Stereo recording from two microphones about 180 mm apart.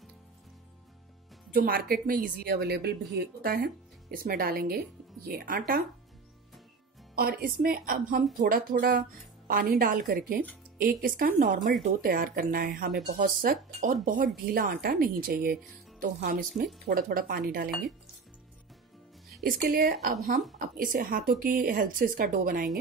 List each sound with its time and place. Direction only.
1.5 s a woman's voice: 55° right (ahead or behind)
7.2 s a woman's voice: 60° right (ahead or behind)
19.4 s a woman's voice: 55° right (ahead or behind)